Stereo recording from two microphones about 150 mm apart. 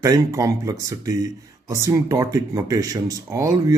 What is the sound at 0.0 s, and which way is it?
Speech, 20° right (ahead or behind).